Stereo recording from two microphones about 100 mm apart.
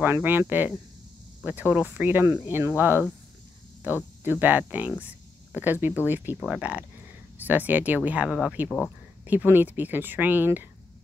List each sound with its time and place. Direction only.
0.0 s speech: 20° right (ahead or behind)
8.6 s speech: 10° left (ahead or behind)
9.2 s speech: 15° right (ahead or behind)